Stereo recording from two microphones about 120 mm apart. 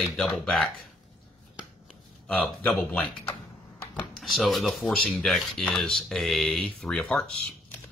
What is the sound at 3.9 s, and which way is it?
Speech, centre (ahead or behind).